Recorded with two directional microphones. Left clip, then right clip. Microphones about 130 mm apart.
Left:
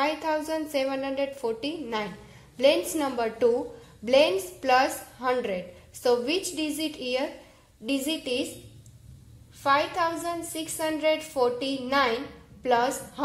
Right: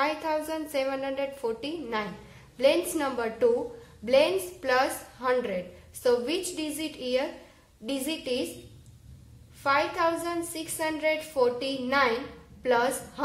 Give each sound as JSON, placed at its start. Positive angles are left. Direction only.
{"t": 0.0, "sound": "a woman's voice", "side_deg": 15}
{"t": 9.6, "sound": "a woman's voice", "side_deg": 5}